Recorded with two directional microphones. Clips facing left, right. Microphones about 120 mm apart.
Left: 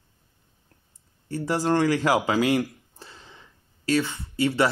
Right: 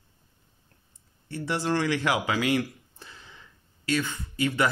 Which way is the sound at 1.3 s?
40° left (ahead or behind).